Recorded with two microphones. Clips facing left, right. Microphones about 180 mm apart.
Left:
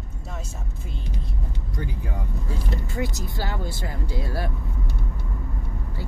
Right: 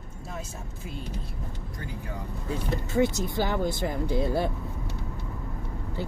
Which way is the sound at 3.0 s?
20° right (ahead or behind).